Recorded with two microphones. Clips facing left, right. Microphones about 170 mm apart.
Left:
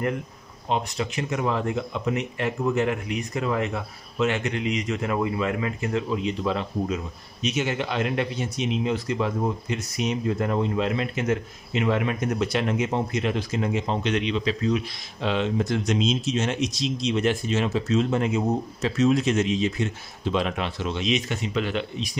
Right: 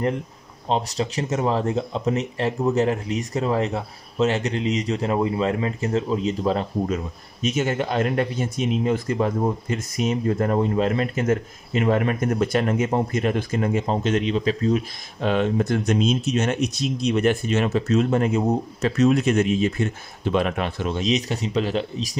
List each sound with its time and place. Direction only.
0.7 s speech: 30° right (ahead or behind)